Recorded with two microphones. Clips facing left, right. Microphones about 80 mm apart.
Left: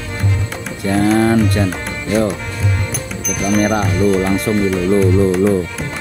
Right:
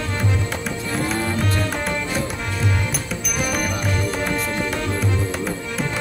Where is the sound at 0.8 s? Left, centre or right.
Left.